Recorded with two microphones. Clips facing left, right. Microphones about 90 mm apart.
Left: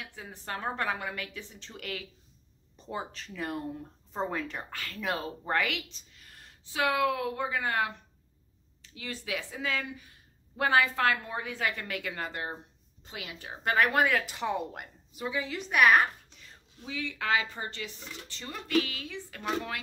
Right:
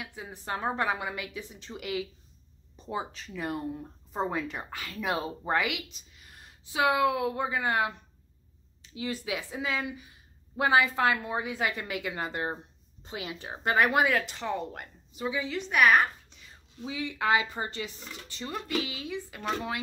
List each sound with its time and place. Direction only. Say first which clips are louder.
0.0 s speech: right 3 dB; 15° right (ahead or behind)
8.9 s speech: right 3 dB; 15° right (ahead or behind)
13.9 s a woman's voice: right 1 dB; 5° right (ahead or behind)
14.2 s a woman's voice: left 1 dB; 10° left (ahead or behind)
16.8 s speech: right 4 dB; 15° right (ahead or behind)